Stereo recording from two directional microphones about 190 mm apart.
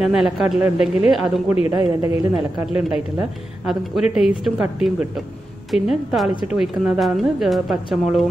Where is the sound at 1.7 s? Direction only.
20° right (ahead or behind).